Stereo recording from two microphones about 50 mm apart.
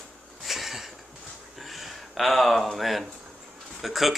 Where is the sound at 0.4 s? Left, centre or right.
Centre.